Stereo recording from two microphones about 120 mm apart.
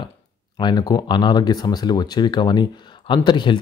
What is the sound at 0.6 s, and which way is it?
Speech, 35° left (ahead or behind).